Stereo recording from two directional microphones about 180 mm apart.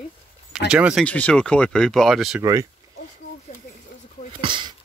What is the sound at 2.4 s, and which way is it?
Speech, 20° right (ahead or behind).